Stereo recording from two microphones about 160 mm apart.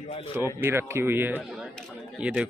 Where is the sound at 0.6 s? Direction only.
15° right (ahead or behind).